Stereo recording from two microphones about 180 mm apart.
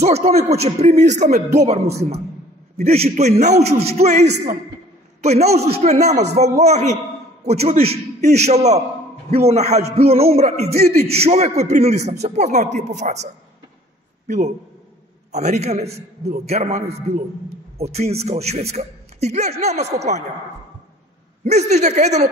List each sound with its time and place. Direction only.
0.0 s a man's voice: 35° right (ahead or behind)
2.8 s a man's voice: 35° right (ahead or behind)
21.5 s a man's voice: 40° right (ahead or behind)